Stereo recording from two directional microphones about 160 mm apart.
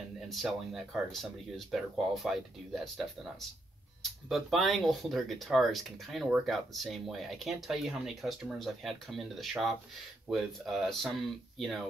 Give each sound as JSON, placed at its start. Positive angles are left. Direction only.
{"t": 0.3, "sound": "speech", "side_deg": 0}